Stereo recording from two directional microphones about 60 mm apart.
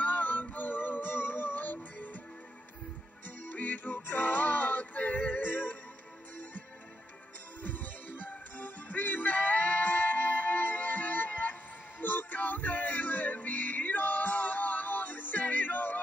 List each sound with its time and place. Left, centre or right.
0.0 s music: left
3.3 s music: left
7.6 s music: left
12.0 s a sound: left